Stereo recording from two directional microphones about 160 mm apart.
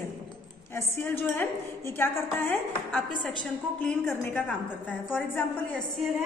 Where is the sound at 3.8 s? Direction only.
10° left (ahead or behind).